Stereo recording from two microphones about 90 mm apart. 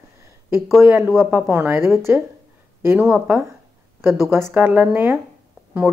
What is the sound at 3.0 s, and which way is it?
Speech, 10° right (ahead or behind).